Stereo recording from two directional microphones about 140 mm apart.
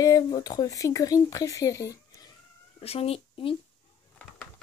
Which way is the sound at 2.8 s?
45° left (ahead or behind).